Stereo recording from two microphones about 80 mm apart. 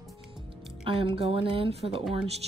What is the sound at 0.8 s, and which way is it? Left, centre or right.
Speech, right.